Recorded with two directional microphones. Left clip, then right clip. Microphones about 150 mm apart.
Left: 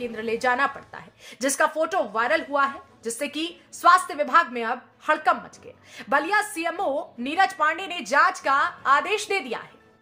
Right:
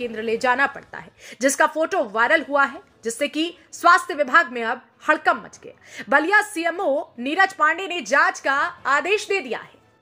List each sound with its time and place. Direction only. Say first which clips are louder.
0.0 s a woman's voice: right 3 dB; 20° right (ahead or behind)